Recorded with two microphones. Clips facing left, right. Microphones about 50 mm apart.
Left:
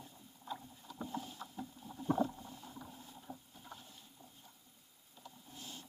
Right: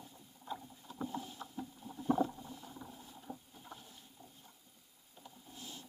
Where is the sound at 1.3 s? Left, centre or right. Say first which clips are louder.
Right 1 dB; centre.